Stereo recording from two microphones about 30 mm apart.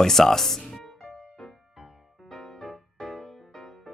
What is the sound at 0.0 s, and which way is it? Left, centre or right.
Speech, centre.